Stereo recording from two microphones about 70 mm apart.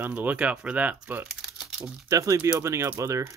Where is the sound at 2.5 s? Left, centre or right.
Right.